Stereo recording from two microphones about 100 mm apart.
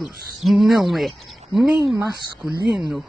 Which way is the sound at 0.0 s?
Centre (ahead or behind).